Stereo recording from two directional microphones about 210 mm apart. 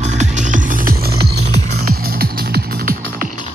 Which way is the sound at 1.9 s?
45° right (ahead or behind).